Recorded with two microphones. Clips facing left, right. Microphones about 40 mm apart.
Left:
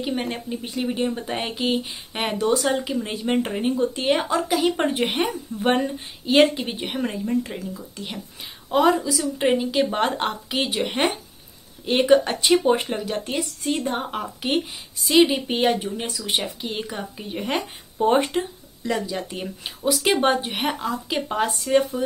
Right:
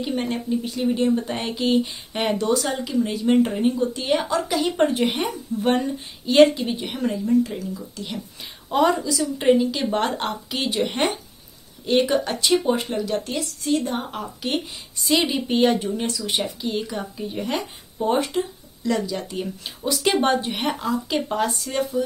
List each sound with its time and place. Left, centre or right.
0.0 s speech: centre
4.8 s speech: left
8.6 s a woman's voice: centre
9.5 s speech: centre
11.8 s speech: centre
15.0 s speech: centre
15.2 s speech: centre; by 18.9 s left
18.9 s speech: centre